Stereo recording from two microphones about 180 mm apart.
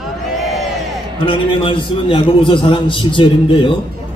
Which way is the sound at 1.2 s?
30° left (ahead or behind).